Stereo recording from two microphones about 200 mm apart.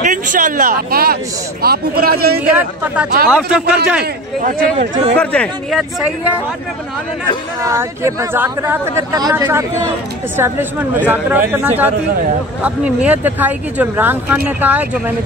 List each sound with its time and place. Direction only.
0.0 s speech: 40° right (ahead or behind)
2.4 s speech: 5° right (ahead or behind)
5.2 s speech: 5° left (ahead or behind)
7.6 s speech: 15° right (ahead or behind)